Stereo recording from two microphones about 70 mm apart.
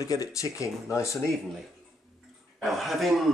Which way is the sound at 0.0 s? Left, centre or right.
Left.